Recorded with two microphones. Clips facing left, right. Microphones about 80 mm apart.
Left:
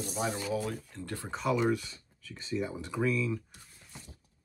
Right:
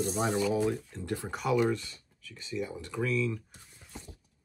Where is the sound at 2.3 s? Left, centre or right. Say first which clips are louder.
Left 2 dB; left.